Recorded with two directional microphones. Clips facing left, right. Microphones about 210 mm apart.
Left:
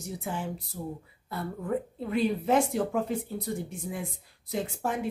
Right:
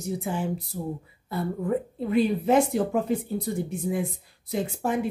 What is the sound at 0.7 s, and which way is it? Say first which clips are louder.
Speech: right 4 dB; 20° right (ahead or behind).